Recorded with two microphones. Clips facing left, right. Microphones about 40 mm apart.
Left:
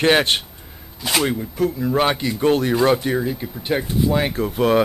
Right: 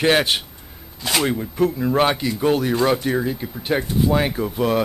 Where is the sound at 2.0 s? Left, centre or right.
Centre.